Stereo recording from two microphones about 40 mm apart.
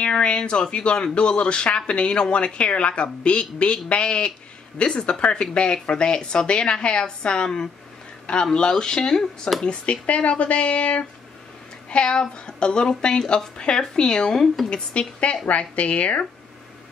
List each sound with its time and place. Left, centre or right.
0.2 s speech: left
9.7 s speech: left
14.7 s speech: left